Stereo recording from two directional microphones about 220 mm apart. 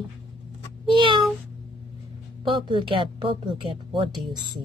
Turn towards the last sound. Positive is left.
turn(degrees=-20)  # may be behind; listen again after turning